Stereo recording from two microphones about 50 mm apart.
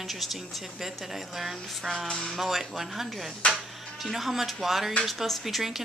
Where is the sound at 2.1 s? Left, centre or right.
Centre.